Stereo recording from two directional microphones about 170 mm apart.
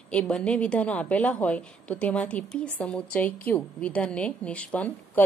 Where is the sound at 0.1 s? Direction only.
5° left (ahead or behind).